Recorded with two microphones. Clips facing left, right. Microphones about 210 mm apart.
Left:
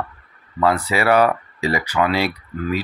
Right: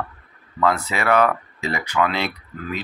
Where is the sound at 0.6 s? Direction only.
10° left (ahead or behind).